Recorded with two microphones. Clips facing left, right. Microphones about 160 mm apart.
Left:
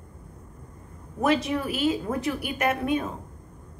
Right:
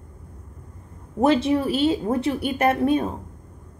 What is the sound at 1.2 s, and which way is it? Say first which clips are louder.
A woman's voice: right 5 dB; 30° right (ahead or behind).